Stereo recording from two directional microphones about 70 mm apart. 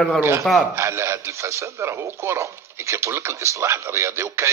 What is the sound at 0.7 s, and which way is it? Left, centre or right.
A man's voice, right.